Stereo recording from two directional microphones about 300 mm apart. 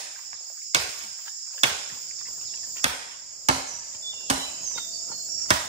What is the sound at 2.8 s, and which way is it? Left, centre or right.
Cricket, right.